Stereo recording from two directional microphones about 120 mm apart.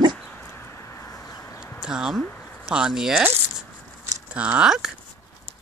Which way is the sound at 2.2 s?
10° left (ahead or behind).